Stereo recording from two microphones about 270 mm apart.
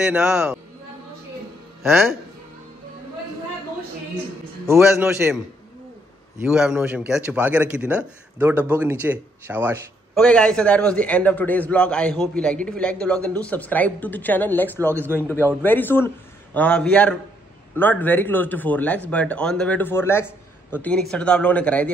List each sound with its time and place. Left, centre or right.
0.0 s a man's voice: centre
1.8 s a man's voice: centre
4.6 s a man's voice: centre
6.4 s a man's voice: centre
14.8 s a man's voice: centre
15.6 s a man's voice: centre